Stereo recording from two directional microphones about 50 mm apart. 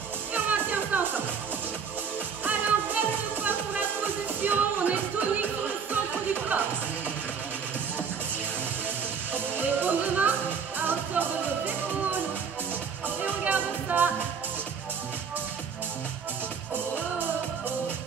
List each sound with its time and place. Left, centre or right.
0.3 s music: right
2.4 s music: right
9.3 s music: right
13.2 s music: right